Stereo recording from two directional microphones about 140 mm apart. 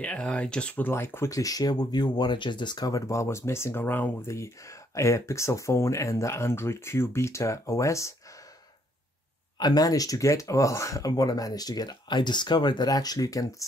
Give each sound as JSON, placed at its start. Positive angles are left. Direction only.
{"t": 0.0, "sound": "speech", "side_deg": 5}
{"t": 9.6, "sound": "speech", "side_deg": 30}